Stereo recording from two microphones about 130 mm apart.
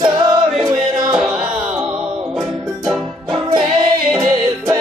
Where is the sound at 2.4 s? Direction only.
30° right (ahead or behind).